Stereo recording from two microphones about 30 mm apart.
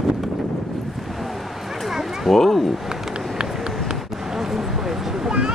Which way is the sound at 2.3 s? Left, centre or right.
Centre.